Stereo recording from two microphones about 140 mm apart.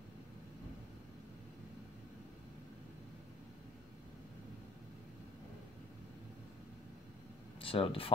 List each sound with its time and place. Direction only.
7.6 s speech: 40° left (ahead or behind)